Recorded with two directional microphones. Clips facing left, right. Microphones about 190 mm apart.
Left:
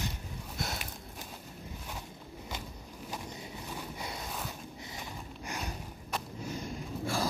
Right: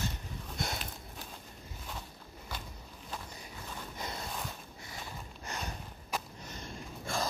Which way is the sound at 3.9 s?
10° left (ahead or behind).